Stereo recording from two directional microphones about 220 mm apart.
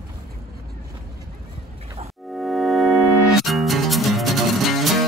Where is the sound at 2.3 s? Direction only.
Centre (ahead or behind).